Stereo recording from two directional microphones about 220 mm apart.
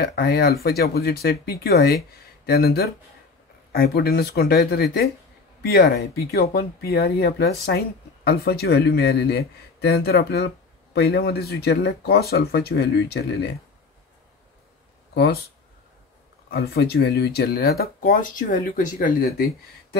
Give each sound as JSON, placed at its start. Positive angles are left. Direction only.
{"t": 0.0, "sound": "speech", "side_deg": 45}
{"t": 16.4, "sound": "speech", "side_deg": 45}